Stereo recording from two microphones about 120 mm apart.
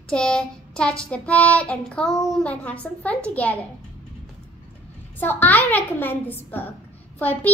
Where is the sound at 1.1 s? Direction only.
10° left (ahead or behind).